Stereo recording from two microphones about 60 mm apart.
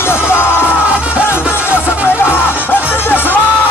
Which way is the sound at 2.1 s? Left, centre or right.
Left.